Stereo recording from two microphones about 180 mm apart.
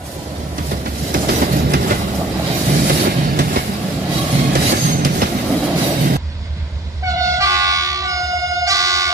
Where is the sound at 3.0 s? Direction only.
55° right (ahead or behind).